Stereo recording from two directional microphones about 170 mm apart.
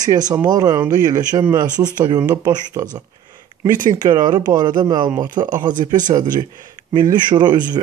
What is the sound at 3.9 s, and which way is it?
Speech, 25° right (ahead or behind).